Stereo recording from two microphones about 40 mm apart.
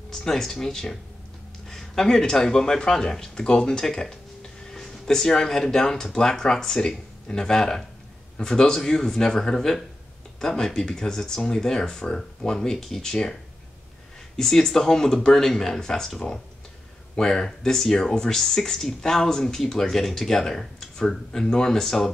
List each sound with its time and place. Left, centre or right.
0.1 s speech: centre